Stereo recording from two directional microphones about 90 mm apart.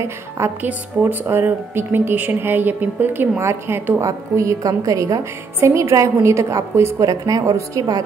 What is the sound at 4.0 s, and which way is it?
A woman's voice, 35° right (ahead or behind).